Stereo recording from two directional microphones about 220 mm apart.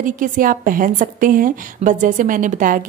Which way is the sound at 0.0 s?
35° right (ahead or behind).